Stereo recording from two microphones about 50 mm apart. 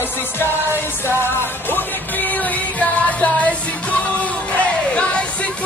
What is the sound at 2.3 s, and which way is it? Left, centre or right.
Music, left.